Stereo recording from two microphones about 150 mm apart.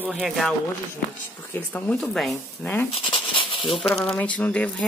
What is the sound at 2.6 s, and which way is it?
Speech, 10° left (ahead or behind).